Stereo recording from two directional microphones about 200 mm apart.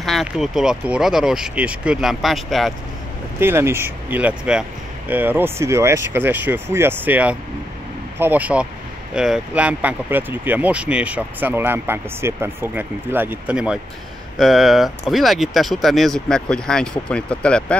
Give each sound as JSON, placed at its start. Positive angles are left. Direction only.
{"t": 0.0, "sound": "speech", "side_deg": 0}
{"t": 3.3, "sound": "speech", "side_deg": -10}